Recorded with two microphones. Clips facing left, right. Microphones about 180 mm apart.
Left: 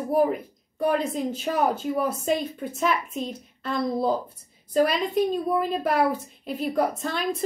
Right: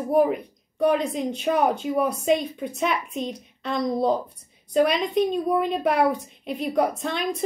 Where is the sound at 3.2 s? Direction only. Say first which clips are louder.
Right 2 dB; 20° right (ahead or behind).